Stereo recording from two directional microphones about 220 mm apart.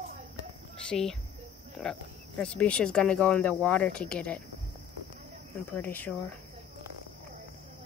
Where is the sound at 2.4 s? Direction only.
5° left (ahead or behind).